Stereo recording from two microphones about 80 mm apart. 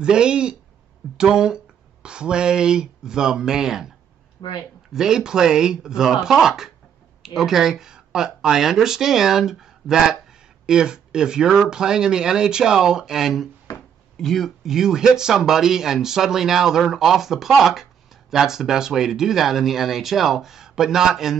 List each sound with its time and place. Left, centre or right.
0.0 s speech: centre
4.4 s speech: left
4.9 s speech: centre
13.7 s a sound: left
14.1 s speech: centre